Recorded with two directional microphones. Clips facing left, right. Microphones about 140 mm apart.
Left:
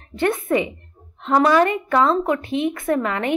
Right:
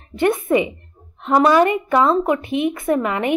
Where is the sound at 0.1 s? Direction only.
15° right (ahead or behind).